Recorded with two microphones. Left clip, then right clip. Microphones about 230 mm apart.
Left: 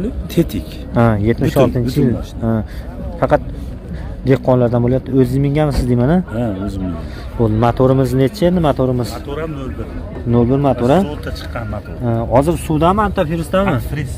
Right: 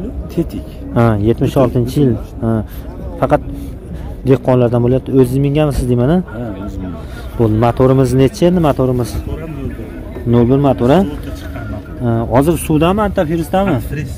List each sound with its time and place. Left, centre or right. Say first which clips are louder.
0.3 s speech: left 2 dB; left
0.9 s speech: right 1 dB; centre
7.3 s speech: right 2 dB; centre
10.3 s speech: right 2 dB; centre